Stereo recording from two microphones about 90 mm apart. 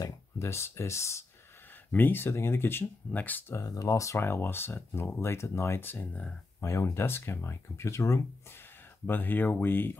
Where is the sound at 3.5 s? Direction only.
40° left (ahead or behind); by 6.4 s 15° left (ahead or behind).